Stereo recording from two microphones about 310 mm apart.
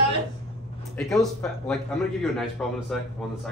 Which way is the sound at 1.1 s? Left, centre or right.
Centre.